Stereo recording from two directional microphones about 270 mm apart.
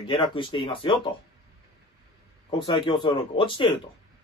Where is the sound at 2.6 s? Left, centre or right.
Centre.